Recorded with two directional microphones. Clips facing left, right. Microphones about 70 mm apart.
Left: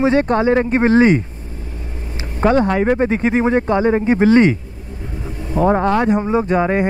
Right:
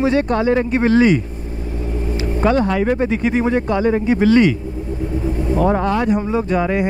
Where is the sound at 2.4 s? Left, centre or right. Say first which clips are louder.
Left 2 dB; left.